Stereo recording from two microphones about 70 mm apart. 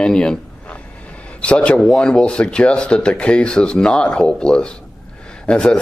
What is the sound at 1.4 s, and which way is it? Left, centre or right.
Speech, centre.